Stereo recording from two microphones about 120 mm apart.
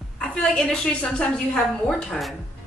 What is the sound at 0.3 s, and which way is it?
A woman's voice, 5° left (ahead or behind).